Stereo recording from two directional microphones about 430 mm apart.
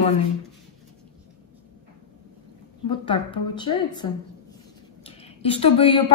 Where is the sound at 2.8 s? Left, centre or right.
Centre.